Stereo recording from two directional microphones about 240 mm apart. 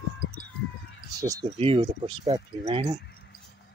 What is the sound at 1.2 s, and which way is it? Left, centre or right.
Speech, centre.